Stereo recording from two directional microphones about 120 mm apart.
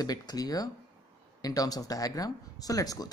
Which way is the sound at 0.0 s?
35° left (ahead or behind).